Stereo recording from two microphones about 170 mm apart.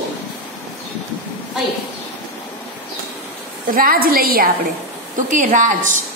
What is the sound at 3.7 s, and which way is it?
Speech, 60° right (ahead or behind).